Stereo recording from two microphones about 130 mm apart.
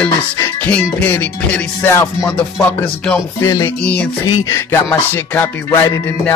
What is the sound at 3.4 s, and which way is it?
Music, 25° left (ahead or behind).